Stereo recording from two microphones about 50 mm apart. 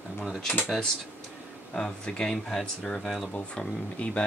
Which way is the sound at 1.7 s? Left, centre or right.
Centre.